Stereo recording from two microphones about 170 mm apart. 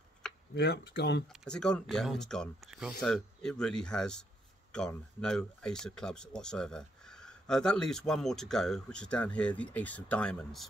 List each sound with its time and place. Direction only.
0.2 s a sound: 5° left (ahead or behind)
0.6 s speech: 75° left (ahead or behind)
1.4 s speech: 5° left (ahead or behind)